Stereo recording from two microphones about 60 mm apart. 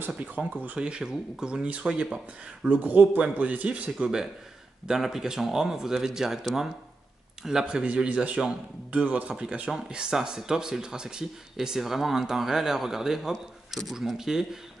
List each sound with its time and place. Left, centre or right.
0.4 s speech: right
4.8 s speech: centre